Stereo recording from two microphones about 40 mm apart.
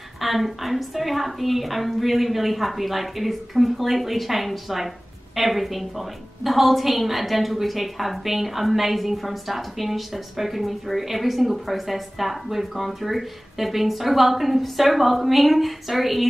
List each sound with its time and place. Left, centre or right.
0.2 s a woman's voice: centre